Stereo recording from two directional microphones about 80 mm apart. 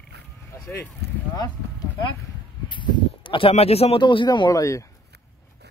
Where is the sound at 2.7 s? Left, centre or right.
Left.